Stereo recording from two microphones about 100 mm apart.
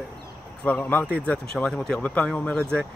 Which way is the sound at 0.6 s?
15° left (ahead or behind).